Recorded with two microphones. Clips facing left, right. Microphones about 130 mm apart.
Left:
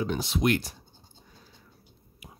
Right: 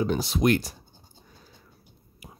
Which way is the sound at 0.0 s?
40° right (ahead or behind).